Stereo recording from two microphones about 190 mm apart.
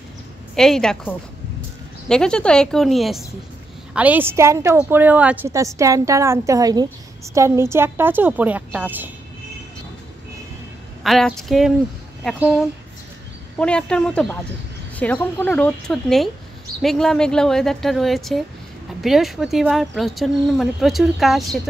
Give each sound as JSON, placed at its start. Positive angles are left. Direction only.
{"t": 0.6, "sound": "a woman's voice", "side_deg": 5}
{"t": 11.1, "sound": "speech", "side_deg": 0}
{"t": 13.6, "sound": "speech", "side_deg": 5}